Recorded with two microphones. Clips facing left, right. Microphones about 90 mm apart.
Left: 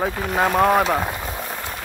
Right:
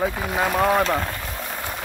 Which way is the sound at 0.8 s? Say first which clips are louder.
Left 2 dB; 15° left (ahead or behind).